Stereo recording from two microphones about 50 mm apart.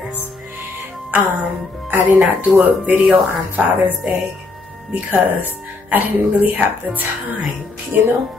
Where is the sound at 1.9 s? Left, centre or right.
Right.